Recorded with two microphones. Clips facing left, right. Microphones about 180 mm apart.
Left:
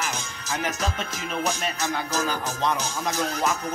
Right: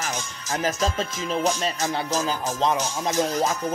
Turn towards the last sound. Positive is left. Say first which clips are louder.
# right 3 dB
turn(degrees=-25)  # may be behind; listen again after turning